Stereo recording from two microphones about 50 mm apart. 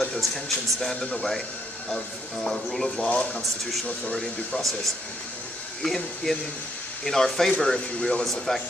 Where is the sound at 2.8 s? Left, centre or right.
Centre.